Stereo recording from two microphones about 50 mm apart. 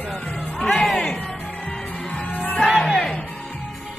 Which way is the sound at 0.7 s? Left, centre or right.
Centre.